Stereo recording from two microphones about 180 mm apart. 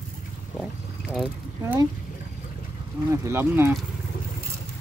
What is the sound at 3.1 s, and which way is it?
Speech, 15° right (ahead or behind).